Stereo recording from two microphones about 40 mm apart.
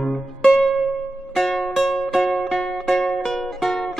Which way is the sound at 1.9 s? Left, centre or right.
Centre.